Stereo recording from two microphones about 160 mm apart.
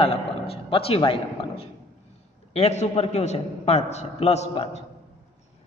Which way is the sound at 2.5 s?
45° left (ahead or behind).